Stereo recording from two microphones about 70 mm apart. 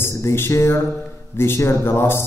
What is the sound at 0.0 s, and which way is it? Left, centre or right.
A man's voice, left.